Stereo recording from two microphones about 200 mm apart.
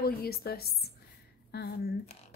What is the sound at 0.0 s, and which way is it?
A woman's voice, 50° left (ahead or behind).